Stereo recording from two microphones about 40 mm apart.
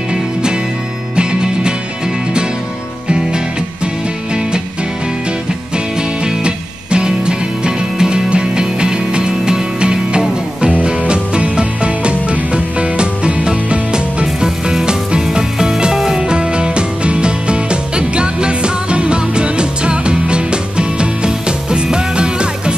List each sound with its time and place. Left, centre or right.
0.1 s music: right
3.1 s music: right
5.9 s music: right
14.2 s music: centre